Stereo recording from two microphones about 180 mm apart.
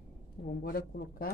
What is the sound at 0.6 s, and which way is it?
Speech, 55° left (ahead or behind).